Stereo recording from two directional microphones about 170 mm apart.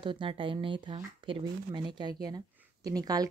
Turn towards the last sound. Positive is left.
turn(degrees=-20)  # may be behind; listen again after turning